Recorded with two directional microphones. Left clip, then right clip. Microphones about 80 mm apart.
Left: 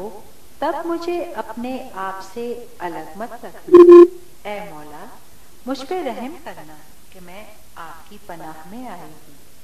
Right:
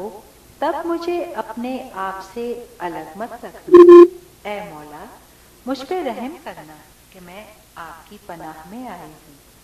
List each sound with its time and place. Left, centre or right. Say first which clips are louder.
0.0 s a woman's voice: right 1 dB; right
3.8 s a sound: even; right
4.4 s a woman's voice: right 1 dB; right